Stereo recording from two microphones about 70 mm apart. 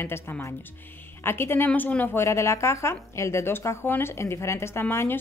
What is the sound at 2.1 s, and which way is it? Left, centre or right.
A woman's voice, left.